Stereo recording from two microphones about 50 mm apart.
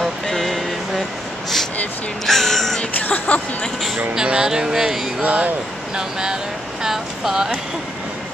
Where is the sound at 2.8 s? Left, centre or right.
Left.